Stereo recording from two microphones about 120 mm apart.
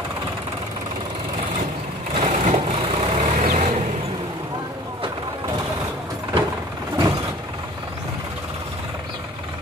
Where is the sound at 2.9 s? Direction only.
55° right (ahead or behind).